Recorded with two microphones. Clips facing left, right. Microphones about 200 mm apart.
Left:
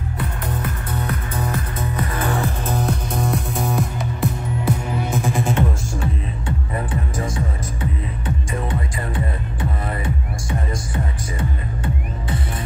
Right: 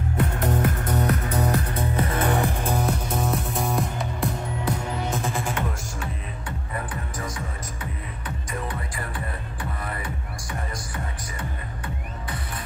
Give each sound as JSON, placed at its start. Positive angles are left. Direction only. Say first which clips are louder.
{"t": 0.2, "sound": "music", "louder": "right 4 dB", "side_deg": -45}
{"t": 5.4, "sound": "music", "louder": "left 7 dB", "side_deg": 25}
{"t": 11.3, "sound": "music", "louder": "left 8 dB", "side_deg": 25}